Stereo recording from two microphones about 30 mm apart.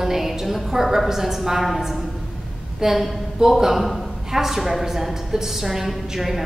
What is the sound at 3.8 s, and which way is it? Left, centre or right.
Speech, centre.